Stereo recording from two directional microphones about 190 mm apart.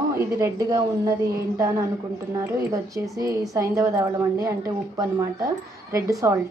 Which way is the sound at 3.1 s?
20° right (ahead or behind).